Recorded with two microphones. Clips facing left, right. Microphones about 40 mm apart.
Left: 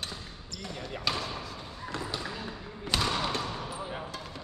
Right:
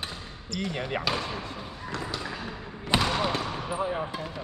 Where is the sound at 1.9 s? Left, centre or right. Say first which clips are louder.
Right 2 dB; centre.